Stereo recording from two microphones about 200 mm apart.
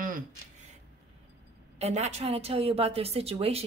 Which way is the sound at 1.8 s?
35° right (ahead or behind).